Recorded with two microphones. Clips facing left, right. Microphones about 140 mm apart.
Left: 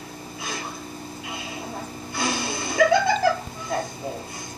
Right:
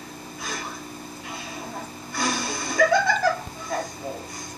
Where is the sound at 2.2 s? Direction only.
25° left (ahead or behind).